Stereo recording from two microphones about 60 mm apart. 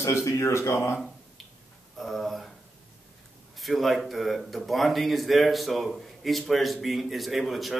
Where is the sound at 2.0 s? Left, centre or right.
Centre.